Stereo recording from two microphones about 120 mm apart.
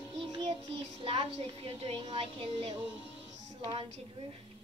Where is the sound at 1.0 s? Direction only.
50° right (ahead or behind).